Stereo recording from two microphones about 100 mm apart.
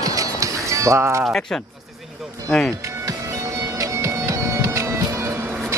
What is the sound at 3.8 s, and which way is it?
Music, 35° right (ahead or behind).